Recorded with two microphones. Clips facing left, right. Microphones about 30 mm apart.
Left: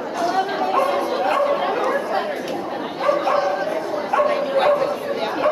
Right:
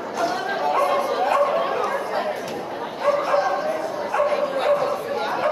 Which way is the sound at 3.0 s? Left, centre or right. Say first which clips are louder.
Left 1 dB; centre.